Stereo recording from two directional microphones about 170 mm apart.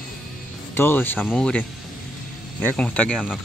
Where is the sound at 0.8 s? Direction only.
10° left (ahead or behind).